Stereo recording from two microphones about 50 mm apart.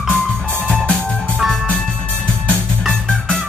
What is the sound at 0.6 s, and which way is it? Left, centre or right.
Music, centre.